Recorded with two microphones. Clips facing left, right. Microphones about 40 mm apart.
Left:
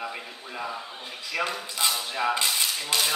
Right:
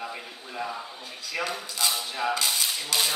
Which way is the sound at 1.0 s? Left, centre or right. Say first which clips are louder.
Left 2 dB; left.